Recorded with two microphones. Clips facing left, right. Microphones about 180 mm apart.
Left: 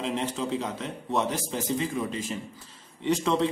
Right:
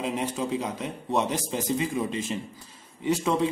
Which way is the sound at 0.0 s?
10° right (ahead or behind).